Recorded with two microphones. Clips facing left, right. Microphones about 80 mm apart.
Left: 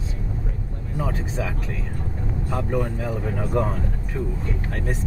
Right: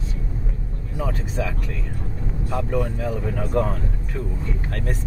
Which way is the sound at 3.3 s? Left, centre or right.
Centre.